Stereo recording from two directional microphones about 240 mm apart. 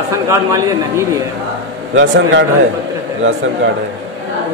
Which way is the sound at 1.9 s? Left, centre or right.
Right.